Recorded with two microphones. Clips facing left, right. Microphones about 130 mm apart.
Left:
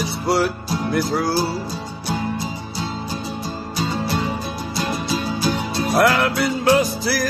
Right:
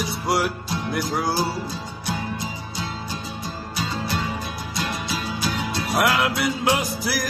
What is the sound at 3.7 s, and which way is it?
Music, 35° left (ahead or behind).